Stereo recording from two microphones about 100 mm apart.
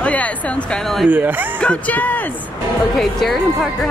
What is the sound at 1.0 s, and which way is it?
Speech, 15° right (ahead or behind).